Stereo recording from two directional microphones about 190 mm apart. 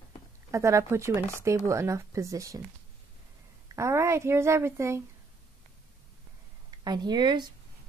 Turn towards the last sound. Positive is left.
turn(degrees=-25)  # may be behind; listen again after turning